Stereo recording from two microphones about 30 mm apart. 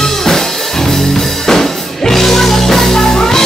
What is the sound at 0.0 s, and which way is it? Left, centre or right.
Music, centre.